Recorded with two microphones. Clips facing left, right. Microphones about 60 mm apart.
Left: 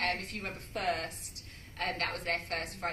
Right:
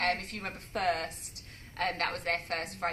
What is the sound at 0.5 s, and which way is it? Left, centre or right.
A woman's voice, right.